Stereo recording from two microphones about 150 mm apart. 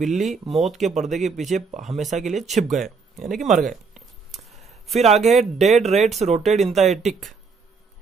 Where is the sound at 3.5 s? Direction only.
60° right (ahead or behind).